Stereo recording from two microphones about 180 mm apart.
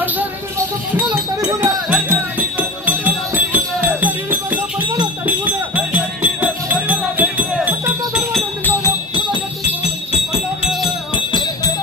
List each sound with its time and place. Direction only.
1.4 s music: 20° right (ahead or behind); by 8.7 s centre (ahead or behind)
8.8 s music: 25° left (ahead or behind)